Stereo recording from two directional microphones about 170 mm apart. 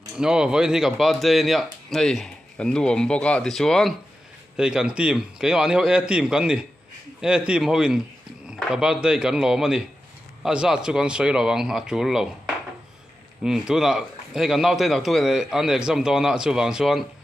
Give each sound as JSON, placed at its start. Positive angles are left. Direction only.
{"t": 0.2, "sound": "speech", "side_deg": -5}
{"t": 13.4, "sound": "speech", "side_deg": -5}